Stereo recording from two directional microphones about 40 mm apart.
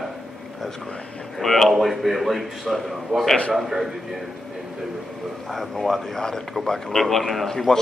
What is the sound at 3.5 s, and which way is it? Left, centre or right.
Speech, centre.